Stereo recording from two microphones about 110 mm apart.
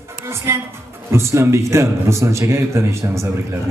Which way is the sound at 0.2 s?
25° right (ahead or behind).